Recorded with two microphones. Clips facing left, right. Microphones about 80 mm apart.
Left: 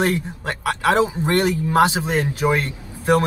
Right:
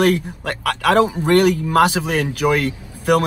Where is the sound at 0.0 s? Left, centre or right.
Left.